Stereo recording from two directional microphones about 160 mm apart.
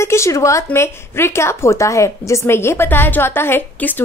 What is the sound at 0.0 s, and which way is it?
A woman's voice, 15° left (ahead or behind).